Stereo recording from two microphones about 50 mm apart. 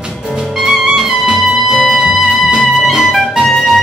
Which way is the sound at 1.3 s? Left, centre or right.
Centre.